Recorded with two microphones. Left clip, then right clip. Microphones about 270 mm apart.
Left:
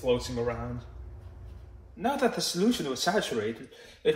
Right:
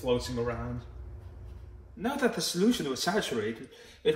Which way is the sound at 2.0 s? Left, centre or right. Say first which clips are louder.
Left 2 dB; centre.